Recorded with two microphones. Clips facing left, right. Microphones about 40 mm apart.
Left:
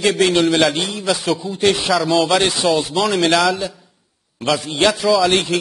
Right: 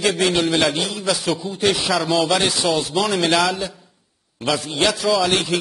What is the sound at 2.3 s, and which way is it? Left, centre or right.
Speech, centre.